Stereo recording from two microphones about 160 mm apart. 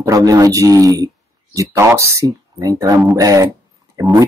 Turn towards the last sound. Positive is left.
turn(degrees=-20)  # may be behind; listen again after turning